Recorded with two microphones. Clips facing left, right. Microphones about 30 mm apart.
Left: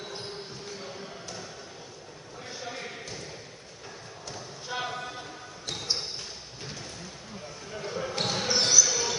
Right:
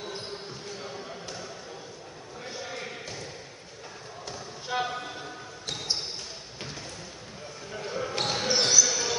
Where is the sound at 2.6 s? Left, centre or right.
Centre.